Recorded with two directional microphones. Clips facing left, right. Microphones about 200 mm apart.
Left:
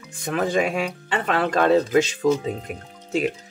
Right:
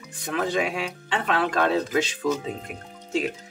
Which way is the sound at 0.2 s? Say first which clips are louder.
Left 3 dB; 50° left (ahead or behind).